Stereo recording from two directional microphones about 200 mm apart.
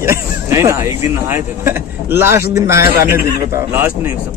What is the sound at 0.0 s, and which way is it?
Speech, 15° right (ahead or behind).